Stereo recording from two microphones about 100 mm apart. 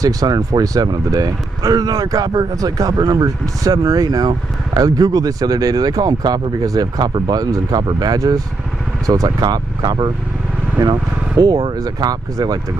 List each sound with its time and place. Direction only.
0.0 s speech: 35° right (ahead or behind)